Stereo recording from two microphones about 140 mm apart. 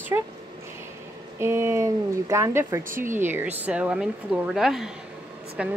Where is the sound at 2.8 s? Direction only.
75° right (ahead or behind).